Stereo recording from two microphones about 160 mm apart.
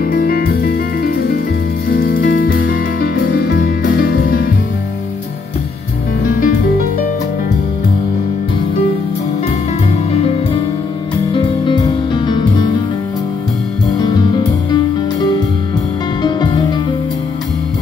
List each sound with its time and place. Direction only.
0.0 s music: 65° left (ahead or behind)
10.1 s music: 40° left (ahead or behind)
13.9 s music: 25° left (ahead or behind)
16.2 s music: 25° left (ahead or behind)